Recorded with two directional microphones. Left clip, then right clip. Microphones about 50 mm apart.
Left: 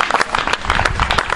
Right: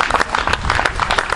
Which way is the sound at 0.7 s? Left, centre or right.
Centre.